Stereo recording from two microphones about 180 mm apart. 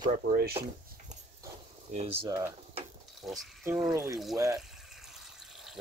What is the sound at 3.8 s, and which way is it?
Speech, 20° right (ahead or behind).